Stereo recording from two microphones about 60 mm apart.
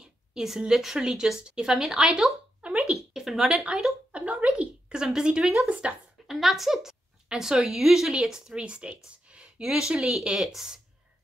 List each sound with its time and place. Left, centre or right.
0.0 s a woman's voice: centre
4.1 s speech: right
5.7 s speech: right
6.2 s a woman's voice: centre